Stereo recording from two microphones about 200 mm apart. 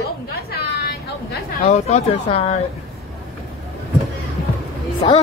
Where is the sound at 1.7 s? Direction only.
30° left (ahead or behind).